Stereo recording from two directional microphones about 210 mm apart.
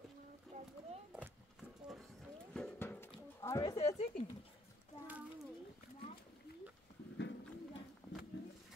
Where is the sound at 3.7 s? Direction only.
30° left (ahead or behind).